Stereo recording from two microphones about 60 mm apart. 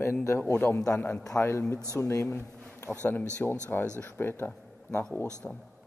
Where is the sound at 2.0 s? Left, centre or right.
Left.